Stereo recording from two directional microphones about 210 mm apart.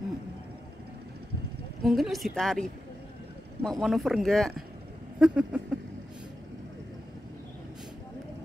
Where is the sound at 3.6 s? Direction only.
Centre (ahead or behind).